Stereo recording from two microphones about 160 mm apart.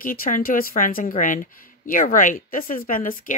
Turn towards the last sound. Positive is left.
turn(degrees=55)  # may be behind; listen again after turning